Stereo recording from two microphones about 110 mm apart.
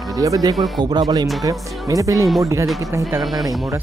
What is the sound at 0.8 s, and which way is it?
Speech, 40° right (ahead or behind).